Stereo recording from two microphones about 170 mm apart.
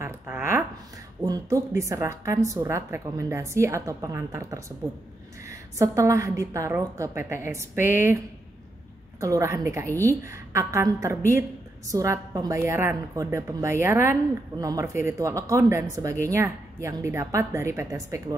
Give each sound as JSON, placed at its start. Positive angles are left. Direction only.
{"t": 0.0, "sound": "a sound", "side_deg": -15}
{"t": 1.2, "sound": "speech", "side_deg": -20}
{"t": 9.2, "sound": "speech", "side_deg": -20}